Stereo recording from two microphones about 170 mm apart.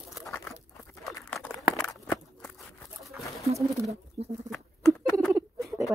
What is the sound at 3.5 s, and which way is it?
Bird, 40° right (ahead or behind).